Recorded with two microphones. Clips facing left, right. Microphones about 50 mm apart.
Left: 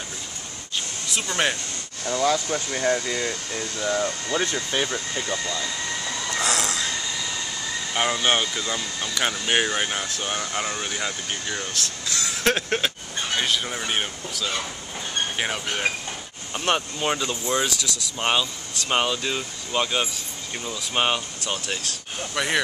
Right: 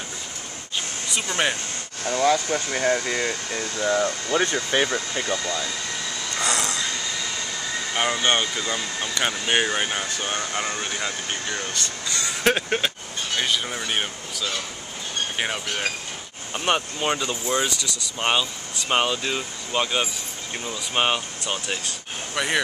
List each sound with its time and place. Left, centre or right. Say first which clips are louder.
1.3 s speech: even; centre
3.0 s speech: right 2 dB; right
6.3 s a sound: even; centre
7.9 s speech: even; centre
15.6 s speech: left 2 dB; centre
16.5 s speech: right 1 dB; centre